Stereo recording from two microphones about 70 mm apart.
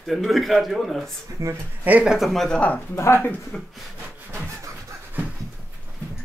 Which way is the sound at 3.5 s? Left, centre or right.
Centre.